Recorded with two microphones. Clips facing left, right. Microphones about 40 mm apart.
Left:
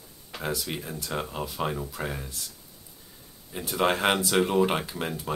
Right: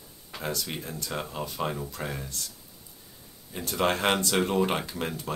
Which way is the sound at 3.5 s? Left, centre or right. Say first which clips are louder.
Left 1 dB; centre.